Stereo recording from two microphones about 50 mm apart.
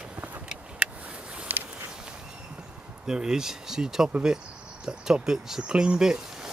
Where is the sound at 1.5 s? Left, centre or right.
Right.